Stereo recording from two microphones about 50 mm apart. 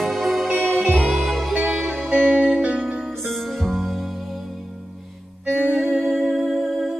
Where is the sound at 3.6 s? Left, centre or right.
Centre.